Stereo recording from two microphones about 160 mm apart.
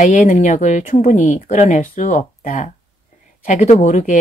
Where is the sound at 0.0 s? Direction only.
50° left (ahead or behind).